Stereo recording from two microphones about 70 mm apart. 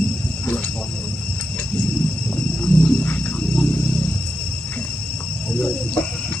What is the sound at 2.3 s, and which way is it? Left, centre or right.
Wild animals, centre.